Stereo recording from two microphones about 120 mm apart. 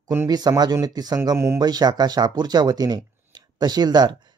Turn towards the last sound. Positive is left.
turn(degrees=-35)  # may be behind; listen again after turning